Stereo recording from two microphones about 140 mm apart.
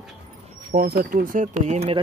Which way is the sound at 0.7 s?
90° right.